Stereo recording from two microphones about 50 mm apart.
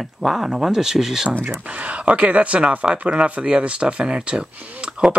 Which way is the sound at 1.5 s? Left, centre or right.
Right.